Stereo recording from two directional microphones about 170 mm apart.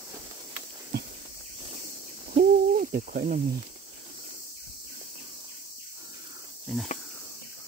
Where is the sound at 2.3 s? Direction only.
50° right (ahead or behind).